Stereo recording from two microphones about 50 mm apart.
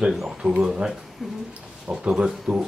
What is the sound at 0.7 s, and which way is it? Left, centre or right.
Speech, centre.